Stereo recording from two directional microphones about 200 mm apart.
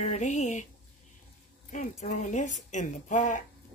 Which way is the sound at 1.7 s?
35° left (ahead or behind).